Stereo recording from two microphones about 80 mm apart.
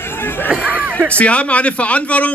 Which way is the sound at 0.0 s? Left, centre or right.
Left.